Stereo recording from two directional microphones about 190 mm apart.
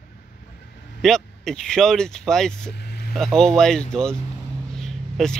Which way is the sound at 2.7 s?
55° left (ahead or behind).